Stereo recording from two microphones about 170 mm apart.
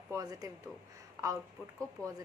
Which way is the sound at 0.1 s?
20° right (ahead or behind).